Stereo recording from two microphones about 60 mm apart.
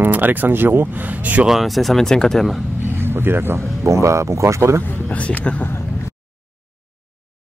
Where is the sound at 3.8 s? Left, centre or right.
Right.